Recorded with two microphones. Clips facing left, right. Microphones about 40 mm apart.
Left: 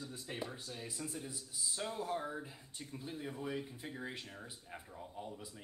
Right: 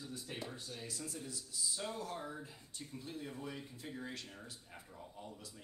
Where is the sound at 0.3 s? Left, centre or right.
Centre.